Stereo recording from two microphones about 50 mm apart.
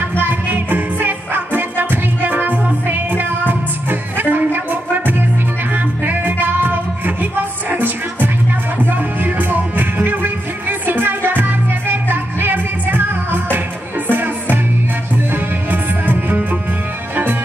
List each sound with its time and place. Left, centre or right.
0.2 s music: right